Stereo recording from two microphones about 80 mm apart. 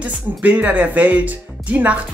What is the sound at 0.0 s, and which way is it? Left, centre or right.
A woman's voice, centre.